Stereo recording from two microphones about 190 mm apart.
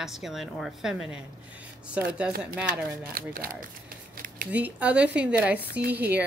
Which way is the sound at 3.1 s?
50° right (ahead or behind).